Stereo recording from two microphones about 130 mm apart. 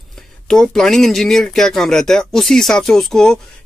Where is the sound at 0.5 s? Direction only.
5° left (ahead or behind).